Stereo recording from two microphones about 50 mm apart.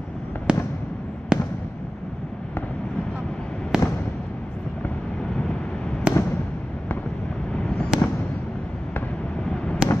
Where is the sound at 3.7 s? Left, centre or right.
Centre.